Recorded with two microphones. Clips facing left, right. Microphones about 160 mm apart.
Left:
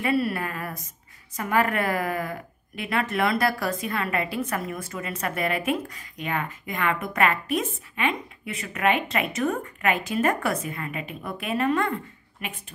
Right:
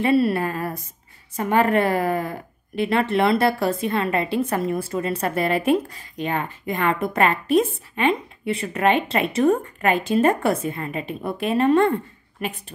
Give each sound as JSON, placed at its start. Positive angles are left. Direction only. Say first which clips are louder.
{"t": 0.0, "sound": "a woman's voice", "louder": "right 6 dB", "side_deg": -30}